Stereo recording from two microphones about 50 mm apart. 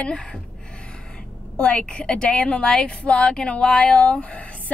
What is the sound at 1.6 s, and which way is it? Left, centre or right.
A woman's voice, left.